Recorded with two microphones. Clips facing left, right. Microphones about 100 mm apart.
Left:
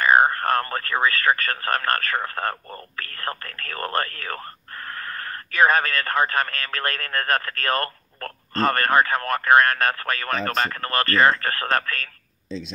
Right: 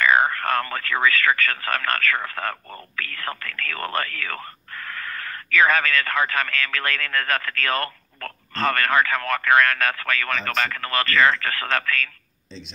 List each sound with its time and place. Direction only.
0.0 s speech: 45° left (ahead or behind)